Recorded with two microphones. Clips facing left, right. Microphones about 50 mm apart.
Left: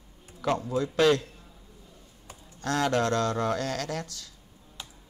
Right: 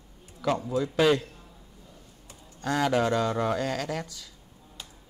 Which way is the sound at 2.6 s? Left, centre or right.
Centre.